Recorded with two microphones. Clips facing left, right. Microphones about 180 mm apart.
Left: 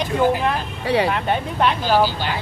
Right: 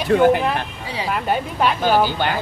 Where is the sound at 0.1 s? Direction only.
60° right (ahead or behind).